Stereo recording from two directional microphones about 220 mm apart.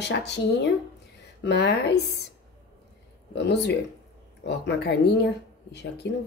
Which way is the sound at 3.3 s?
50° left (ahead or behind).